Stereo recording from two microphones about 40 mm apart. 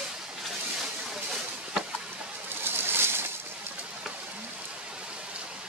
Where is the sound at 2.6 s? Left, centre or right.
Right.